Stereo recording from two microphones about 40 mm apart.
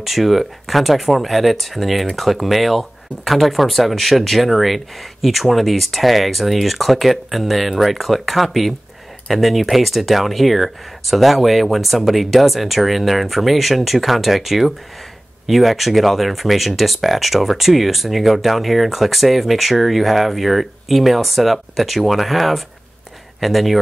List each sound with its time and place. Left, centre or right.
0.0 s speech: centre